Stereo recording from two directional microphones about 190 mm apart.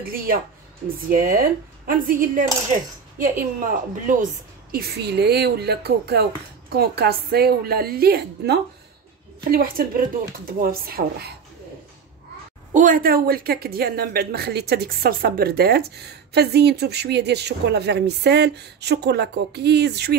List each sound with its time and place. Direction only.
0.0 s speech: 50° right (ahead or behind)
4.7 s a woman's voice: 55° right (ahead or behind)
12.7 s a woman's voice: 45° right (ahead or behind)